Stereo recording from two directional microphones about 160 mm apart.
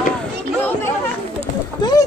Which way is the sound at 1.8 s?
25° left (ahead or behind).